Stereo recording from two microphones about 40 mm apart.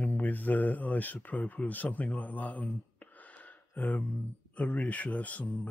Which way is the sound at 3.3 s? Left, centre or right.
Left.